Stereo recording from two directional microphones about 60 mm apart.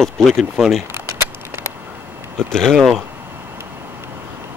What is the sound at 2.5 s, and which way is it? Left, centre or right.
Speech, centre.